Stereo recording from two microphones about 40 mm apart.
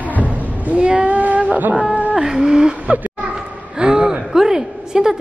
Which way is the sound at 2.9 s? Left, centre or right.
Right.